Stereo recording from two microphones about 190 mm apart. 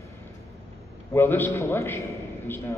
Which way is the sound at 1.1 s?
10° left (ahead or behind).